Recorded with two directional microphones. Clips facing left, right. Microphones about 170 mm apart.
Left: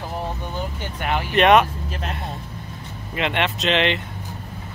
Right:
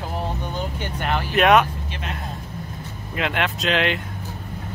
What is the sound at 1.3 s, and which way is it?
Speech, centre (ahead or behind).